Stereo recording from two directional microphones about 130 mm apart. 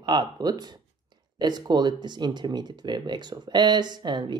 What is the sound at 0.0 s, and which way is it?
Speech, 35° right (ahead or behind).